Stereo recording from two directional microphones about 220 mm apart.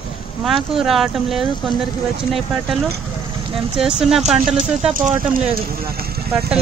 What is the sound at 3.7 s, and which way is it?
Speech, centre (ahead or behind).